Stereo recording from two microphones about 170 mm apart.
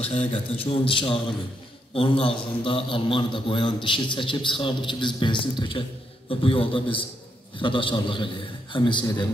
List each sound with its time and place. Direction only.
0.1 s a man's voice: 35° left (ahead or behind)